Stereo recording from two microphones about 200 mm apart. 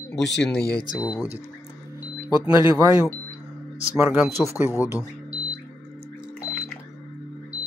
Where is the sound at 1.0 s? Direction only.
15° left (ahead or behind).